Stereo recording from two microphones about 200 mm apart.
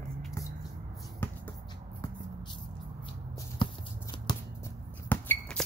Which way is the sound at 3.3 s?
25° left (ahead or behind).